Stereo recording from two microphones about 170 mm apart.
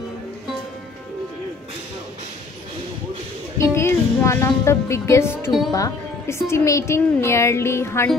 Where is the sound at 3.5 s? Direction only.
15° left (ahead or behind).